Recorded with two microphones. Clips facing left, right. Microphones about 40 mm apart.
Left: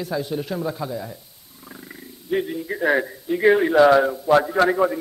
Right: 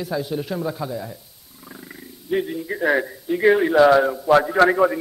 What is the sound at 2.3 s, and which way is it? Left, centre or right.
A man's voice, centre.